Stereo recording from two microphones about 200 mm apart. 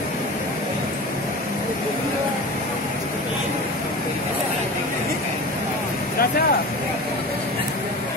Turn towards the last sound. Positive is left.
turn(degrees=50)  # may be behind; listen again after turning